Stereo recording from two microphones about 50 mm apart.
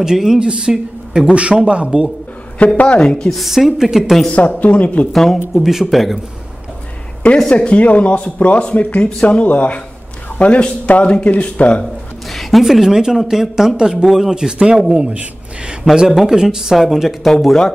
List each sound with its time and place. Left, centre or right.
0.0 s a woman's voice: centre
2.6 s speech: left
3.0 s a woman's voice: centre
3.3 s speech: centre
4.3 s speech: left
5.1 s speech: centre
7.5 s speech: left
12.3 s speech: centre
14.3 s speech: centre
17.4 s speech: centre